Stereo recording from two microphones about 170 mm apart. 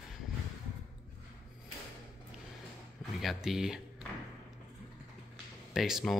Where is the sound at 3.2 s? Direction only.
Centre (ahead or behind).